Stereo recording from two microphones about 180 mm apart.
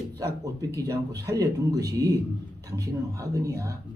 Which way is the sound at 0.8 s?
20° right (ahead or behind).